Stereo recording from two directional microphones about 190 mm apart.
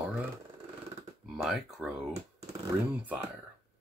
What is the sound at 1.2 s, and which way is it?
Speech, centre (ahead or behind).